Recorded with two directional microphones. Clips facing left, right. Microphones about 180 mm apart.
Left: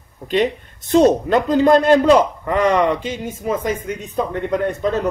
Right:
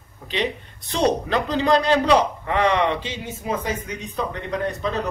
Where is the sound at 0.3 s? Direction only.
50° left (ahead or behind).